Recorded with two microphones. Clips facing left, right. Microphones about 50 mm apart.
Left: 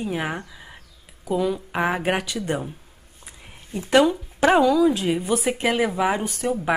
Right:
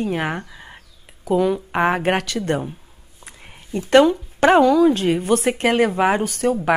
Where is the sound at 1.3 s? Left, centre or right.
Right.